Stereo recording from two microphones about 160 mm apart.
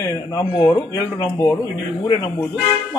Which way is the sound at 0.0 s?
20° left (ahead or behind).